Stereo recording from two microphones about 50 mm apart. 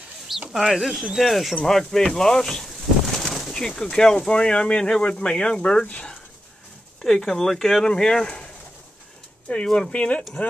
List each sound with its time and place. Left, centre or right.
0.5 s speech: centre
7.0 s speech: centre
9.5 s speech: left